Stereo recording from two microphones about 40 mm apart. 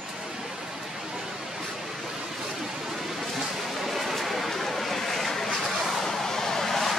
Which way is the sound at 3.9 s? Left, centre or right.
Centre.